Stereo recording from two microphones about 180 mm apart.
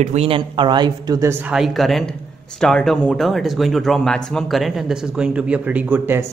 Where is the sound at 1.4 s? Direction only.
5° right (ahead or behind).